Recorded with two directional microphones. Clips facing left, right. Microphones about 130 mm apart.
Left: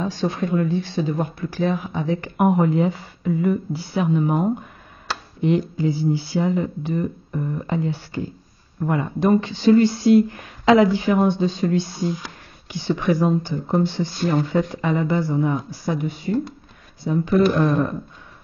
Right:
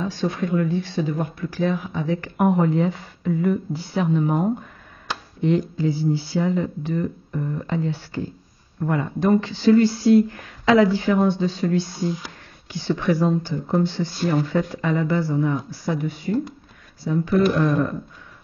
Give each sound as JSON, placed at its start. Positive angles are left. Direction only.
{"t": 0.0, "sound": "speech", "side_deg": 25}